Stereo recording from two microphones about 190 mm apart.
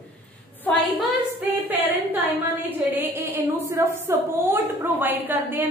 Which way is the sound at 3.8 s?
15° right (ahead or behind).